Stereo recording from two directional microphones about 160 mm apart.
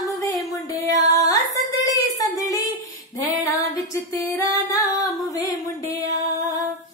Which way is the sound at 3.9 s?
20° left (ahead or behind).